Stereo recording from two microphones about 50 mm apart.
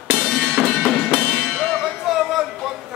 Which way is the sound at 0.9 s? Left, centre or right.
Centre.